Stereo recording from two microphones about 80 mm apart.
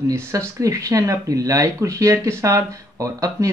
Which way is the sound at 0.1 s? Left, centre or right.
Right.